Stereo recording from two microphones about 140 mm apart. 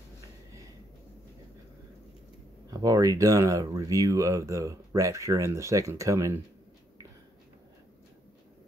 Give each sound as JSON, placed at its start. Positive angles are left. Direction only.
{"t": 2.7, "sound": "speech", "side_deg": -25}